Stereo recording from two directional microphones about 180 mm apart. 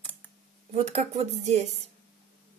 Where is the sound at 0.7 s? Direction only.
35° right (ahead or behind).